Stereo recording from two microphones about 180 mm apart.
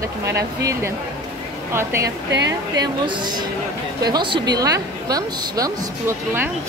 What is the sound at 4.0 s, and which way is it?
A woman's voice, 25° right (ahead or behind).